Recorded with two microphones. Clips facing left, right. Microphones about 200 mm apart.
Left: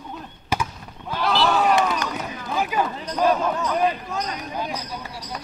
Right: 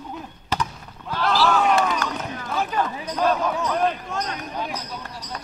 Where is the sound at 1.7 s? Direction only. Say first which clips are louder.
Even; 15° left (ahead or behind).